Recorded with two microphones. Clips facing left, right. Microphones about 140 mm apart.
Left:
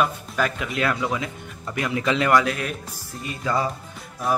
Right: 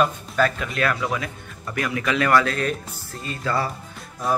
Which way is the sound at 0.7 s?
20° left (ahead or behind).